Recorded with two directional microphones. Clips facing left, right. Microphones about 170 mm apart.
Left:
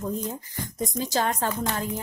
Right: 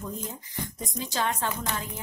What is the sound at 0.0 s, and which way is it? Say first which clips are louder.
Speech: left 6 dB; 45° left (ahead or behind).